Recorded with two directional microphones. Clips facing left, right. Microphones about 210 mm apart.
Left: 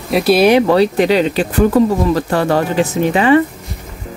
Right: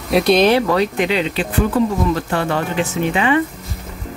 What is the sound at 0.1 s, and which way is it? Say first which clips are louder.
Speech: left 2 dB; 5° left (ahead or behind).